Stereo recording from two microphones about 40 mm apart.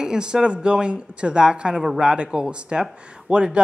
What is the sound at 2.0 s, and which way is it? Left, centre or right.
A woman's voice, right.